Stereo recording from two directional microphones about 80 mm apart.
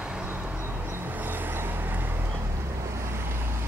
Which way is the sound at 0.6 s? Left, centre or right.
Right.